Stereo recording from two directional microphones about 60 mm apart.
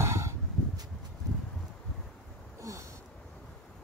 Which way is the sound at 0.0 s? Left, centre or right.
Right.